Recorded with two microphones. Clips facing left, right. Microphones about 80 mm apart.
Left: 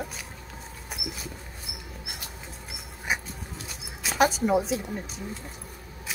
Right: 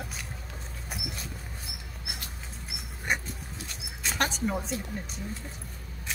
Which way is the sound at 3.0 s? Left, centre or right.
Centre.